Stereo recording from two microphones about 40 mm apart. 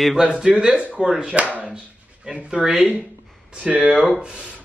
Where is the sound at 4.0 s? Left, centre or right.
Right.